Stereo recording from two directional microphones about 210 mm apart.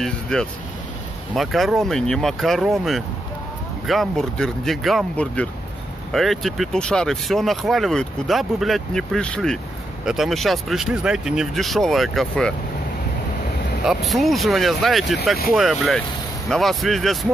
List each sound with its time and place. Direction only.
0.0 s speech: 5° left (ahead or behind)
13.8 s speech: centre (ahead or behind)